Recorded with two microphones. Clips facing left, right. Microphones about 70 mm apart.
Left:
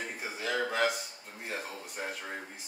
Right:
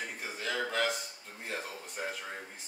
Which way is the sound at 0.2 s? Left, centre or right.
Centre.